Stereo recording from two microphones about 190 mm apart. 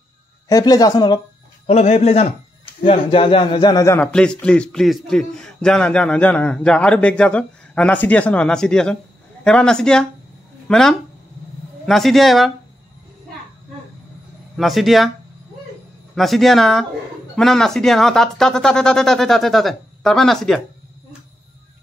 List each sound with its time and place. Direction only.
0.5 s a man's voice: 20° left (ahead or behind)
1.7 s a man's voice: 35° left (ahead or behind); by 12.5 s centre (ahead or behind)
14.6 s a man's voice: centre (ahead or behind)
16.2 s a man's voice: centre (ahead or behind)